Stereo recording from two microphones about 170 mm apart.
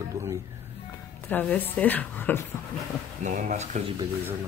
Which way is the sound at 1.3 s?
10° left (ahead or behind).